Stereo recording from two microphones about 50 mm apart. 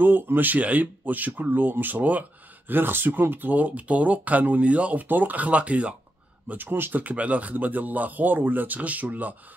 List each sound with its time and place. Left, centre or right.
0.0 s speech: right
2.7 s speech: right
6.5 s speech: right
7.0 s speech: right